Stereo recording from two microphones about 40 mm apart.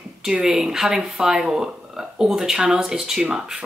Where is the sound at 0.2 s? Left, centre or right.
Centre.